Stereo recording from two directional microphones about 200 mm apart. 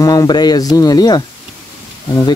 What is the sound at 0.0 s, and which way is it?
Speech, 15° left (ahead or behind).